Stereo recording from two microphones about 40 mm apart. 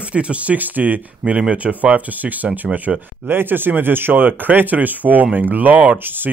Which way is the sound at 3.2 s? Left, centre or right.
Right.